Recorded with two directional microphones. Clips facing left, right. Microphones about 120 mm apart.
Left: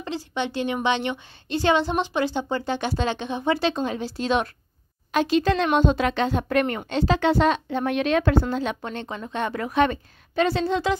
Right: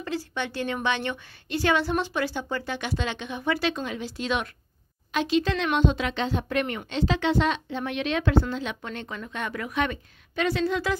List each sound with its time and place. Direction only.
0.0 s a woman's voice: 20° left (ahead or behind)